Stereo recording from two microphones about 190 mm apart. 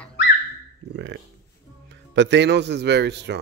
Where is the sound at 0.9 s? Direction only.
75° right (ahead or behind).